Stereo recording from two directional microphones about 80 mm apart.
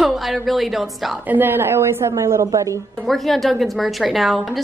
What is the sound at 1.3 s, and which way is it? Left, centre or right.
A woman's voice, right.